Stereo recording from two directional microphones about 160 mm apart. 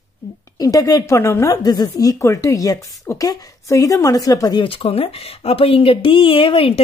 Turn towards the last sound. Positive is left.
turn(degrees=35)  # may be behind; listen again after turning